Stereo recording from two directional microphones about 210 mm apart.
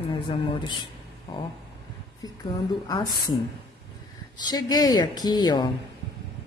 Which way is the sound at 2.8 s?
20° left (ahead or behind).